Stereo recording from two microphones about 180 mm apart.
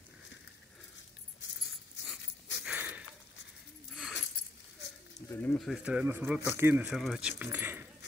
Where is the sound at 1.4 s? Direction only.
90° left.